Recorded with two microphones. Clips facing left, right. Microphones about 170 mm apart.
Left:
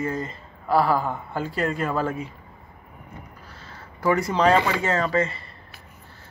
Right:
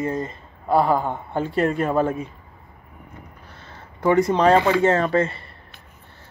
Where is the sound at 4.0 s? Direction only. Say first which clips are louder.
Right 4 dB; 25° right (ahead or behind).